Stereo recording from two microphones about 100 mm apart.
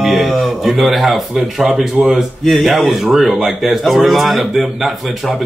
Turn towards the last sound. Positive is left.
turn(degrees=-5)  # may be behind; listen again after turning